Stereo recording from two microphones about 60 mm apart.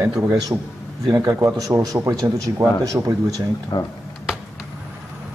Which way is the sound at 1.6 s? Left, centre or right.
Right.